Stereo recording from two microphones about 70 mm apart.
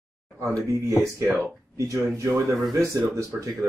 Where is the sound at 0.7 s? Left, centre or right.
Right.